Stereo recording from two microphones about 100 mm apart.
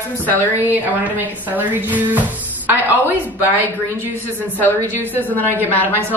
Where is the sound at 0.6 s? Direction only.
20° right (ahead or behind).